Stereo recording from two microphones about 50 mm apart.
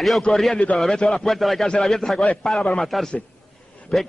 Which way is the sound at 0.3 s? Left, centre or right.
Centre.